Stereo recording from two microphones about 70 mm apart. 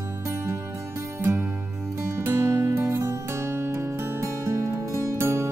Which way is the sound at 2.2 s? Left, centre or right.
Right.